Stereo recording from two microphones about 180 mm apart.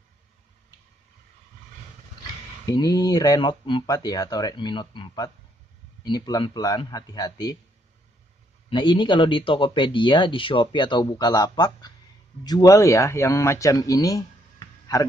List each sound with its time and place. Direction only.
2.6 s speech: 20° left (ahead or behind)
8.6 s speech: 25° left (ahead or behind)